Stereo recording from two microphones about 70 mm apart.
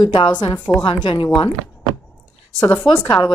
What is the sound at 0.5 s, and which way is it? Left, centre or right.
Speech, centre.